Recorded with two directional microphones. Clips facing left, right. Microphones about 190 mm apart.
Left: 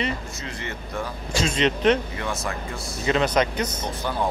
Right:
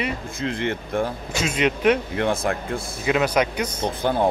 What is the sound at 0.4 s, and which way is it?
Speech, 55° right (ahead or behind).